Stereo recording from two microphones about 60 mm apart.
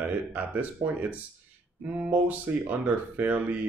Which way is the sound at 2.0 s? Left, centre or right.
Right.